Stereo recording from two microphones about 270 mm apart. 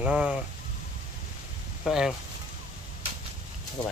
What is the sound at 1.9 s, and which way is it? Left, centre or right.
Speech, centre.